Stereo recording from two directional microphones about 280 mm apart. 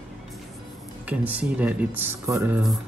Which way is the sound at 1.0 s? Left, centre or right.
Centre.